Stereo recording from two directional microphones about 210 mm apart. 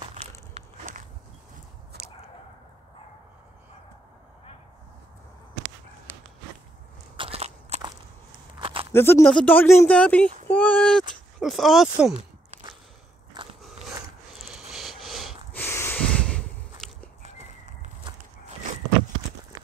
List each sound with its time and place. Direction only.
1.9 s squish: 50° right (ahead or behind)
7.2 s walk: 30° right (ahead or behind)
8.5 s a sound: 25° right (ahead or behind)
8.9 s speech: 10° left (ahead or behind)
14.4 s sniff: 5° right (ahead or behind)
15.6 s a sound: 10° left (ahead or behind)
16.8 s walk: centre (ahead or behind)